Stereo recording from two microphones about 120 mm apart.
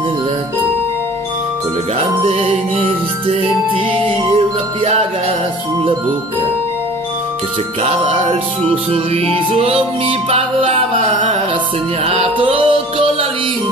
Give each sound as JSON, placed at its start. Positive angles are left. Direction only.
{"t": 2.2, "sound": "music", "side_deg": -55}
{"t": 7.8, "sound": "music", "side_deg": -55}